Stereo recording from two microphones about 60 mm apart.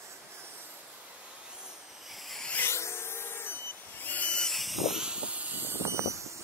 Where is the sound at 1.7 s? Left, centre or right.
Centre.